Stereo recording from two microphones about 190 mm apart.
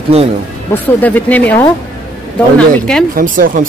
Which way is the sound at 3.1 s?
45° right (ahead or behind).